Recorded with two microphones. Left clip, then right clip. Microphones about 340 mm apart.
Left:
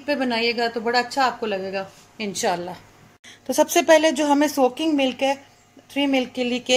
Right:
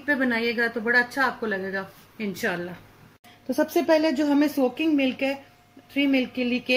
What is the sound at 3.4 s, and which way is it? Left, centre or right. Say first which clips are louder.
Speech: left 5 dB; left.